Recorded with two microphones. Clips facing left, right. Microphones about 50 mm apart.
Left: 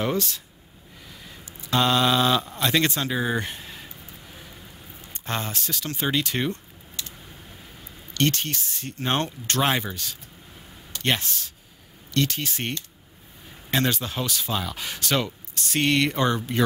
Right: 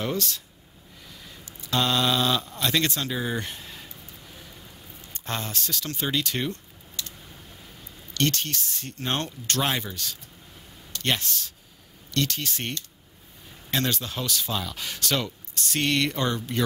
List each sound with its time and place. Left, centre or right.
0.0 s speech: centre
1.0 s a sound: centre
8.1 s speech: centre